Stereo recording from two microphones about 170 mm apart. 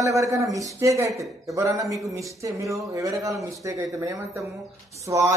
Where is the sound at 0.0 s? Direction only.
20° right (ahead or behind).